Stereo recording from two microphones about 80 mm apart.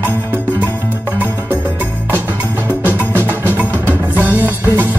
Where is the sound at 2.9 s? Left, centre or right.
Left.